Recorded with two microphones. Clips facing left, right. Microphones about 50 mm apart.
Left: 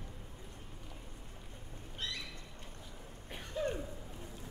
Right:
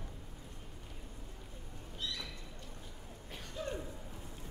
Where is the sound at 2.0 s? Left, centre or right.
Left.